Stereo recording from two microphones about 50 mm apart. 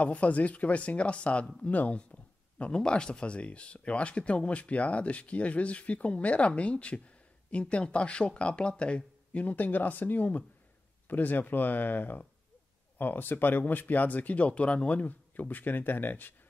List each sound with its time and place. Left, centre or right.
0.0 s speech: left
2.6 s speech: centre; by 16.3 s left